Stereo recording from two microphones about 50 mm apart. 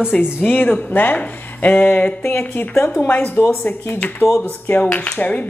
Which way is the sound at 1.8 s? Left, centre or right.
Left.